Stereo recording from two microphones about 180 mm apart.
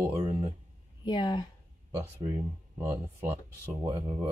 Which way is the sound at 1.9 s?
15° right (ahead or behind).